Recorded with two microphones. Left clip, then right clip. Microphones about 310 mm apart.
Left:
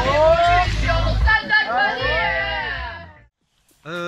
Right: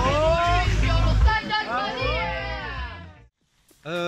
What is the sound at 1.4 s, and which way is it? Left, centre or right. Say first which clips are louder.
Music: left 8 dB; left.